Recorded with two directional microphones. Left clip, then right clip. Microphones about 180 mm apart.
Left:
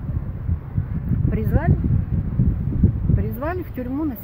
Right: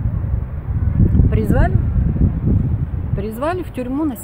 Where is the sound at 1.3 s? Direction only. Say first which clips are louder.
Right 6 dB; 10° right (ahead or behind).